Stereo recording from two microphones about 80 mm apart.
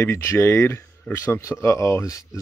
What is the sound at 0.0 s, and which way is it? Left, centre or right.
Speech, left.